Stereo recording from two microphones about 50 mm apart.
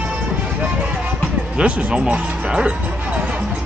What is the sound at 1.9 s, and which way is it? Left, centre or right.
Music, right.